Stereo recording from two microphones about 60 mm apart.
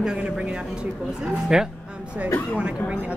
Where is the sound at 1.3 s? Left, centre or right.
Centre.